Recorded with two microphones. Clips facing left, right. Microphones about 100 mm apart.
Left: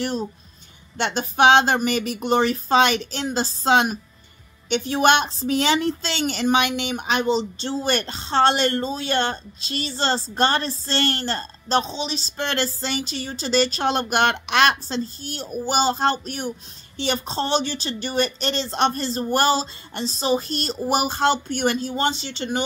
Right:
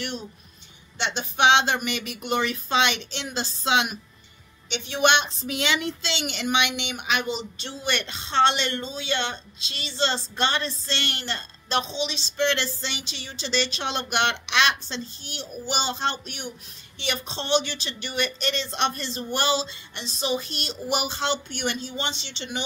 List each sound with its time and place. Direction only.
0.0 s a woman's voice: 35° left (ahead or behind)